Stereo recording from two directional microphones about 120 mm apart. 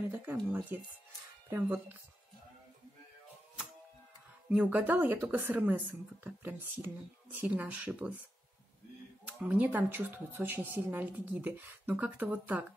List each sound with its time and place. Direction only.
0.1 s speech: 15° right (ahead or behind)
4.5 s speech: 10° right (ahead or behind)
9.4 s speech: 10° right (ahead or behind)